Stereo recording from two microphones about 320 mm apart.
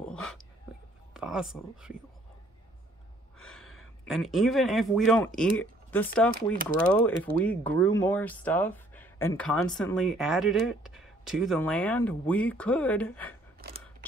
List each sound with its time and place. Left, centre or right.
0.1 s whispering: centre
1.1 s speech: centre
3.3 s speech: centre